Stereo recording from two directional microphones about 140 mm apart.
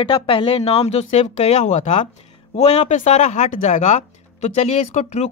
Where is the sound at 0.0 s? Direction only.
40° left (ahead or behind).